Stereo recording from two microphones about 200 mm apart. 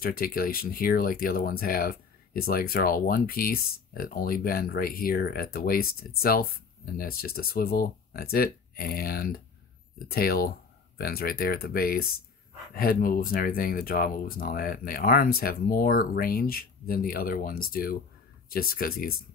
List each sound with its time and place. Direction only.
0.0 s speech: 50° left (ahead or behind)